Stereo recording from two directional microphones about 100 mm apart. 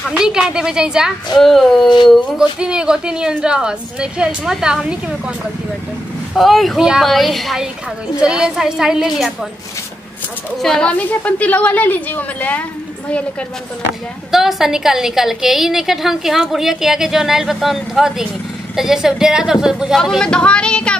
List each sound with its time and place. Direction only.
0.1 s a woman's voice: 5° right (ahead or behind)
2.6 s a woman's voice: 10° right (ahead or behind)
6.3 s a woman's voice: centre (ahead or behind)
10.6 s a woman's voice: 5° left (ahead or behind)
14.3 s a woman's voice: 5° right (ahead or behind)
20.0 s a woman's voice: 5° left (ahead or behind)